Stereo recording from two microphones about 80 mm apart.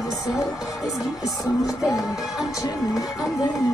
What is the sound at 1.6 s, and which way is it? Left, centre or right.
Music, left.